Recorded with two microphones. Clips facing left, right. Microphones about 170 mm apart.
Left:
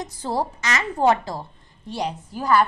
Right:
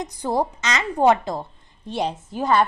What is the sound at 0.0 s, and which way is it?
A woman's voice, 15° right (ahead or behind).